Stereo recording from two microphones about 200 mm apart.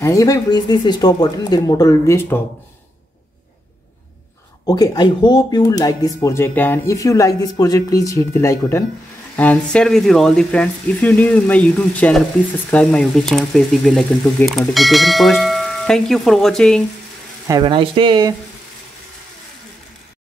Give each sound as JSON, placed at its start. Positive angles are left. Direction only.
{"t": 0.0, "sound": "speech", "side_deg": 15}
{"t": 4.6, "sound": "speech", "side_deg": 20}
{"t": 17.5, "sound": "speech", "side_deg": -25}